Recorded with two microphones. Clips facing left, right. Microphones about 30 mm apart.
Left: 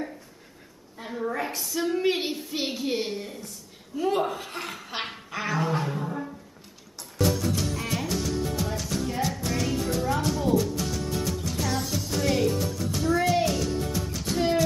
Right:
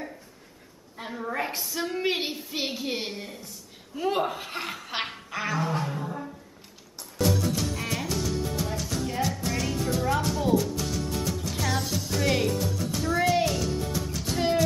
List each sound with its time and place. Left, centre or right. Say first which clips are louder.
1.0 s a sound: left 1 dB; right
1.6 s a woman's voice: left 3 dB; centre
4.7 s snicker: right 2 dB; centre
5.0 s music: even; centre